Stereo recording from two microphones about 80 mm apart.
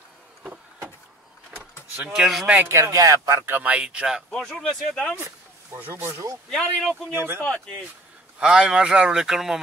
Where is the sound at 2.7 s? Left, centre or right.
Right.